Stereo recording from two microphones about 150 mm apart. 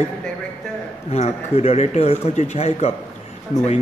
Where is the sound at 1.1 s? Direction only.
45° left (ahead or behind).